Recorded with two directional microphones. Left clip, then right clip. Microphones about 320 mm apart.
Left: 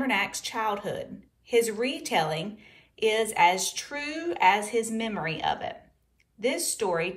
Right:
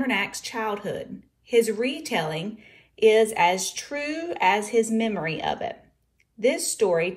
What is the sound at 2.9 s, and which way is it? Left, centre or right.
Speech, left.